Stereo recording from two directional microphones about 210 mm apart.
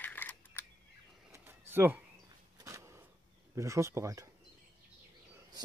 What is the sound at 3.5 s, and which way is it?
Speech, 15° right (ahead or behind).